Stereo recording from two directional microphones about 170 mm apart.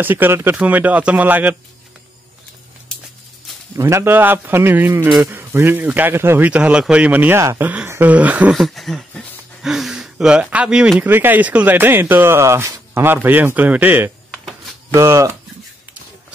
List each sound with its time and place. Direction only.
0.0 s speech: 10° right (ahead or behind)
3.7 s speech: 15° right (ahead or behind)